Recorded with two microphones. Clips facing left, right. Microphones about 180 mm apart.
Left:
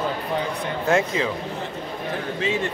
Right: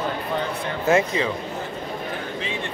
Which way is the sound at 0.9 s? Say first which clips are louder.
Right 2 dB; centre (ahead or behind).